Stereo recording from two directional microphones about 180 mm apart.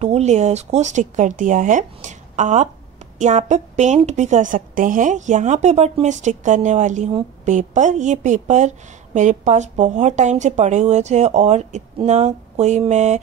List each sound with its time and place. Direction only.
0.0 s a woman's voice: 35° right (ahead or behind)